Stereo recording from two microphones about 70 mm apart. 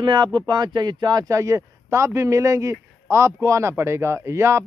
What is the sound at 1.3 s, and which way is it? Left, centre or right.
A man's voice, right.